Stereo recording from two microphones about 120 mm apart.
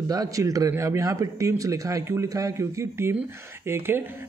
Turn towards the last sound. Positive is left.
turn(degrees=-20)  # may be behind; listen again after turning